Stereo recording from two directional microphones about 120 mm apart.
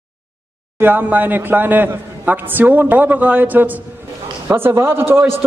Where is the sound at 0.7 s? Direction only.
15° right (ahead or behind).